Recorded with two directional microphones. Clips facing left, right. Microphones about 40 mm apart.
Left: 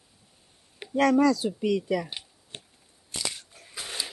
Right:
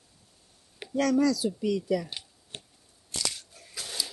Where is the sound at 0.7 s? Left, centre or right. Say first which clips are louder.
Left 3 dB; left.